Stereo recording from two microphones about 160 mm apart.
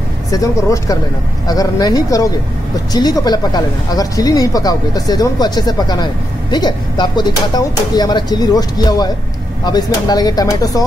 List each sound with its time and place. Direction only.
0.3 s speech: 20° left (ahead or behind)